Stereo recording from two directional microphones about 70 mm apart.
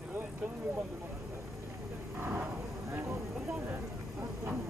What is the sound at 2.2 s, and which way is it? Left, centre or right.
Vehicle, right.